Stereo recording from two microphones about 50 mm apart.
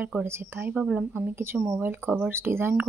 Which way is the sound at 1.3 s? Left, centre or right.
Right.